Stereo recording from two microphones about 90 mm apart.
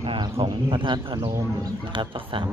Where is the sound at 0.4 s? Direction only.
70° right (ahead or behind).